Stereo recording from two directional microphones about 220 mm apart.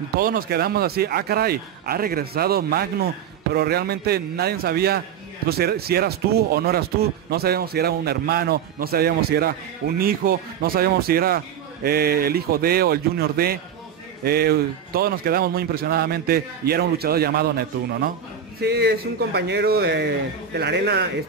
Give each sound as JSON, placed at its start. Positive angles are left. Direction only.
{"t": 0.2, "sound": "speech", "side_deg": -40}
{"t": 18.6, "sound": "speech", "side_deg": -50}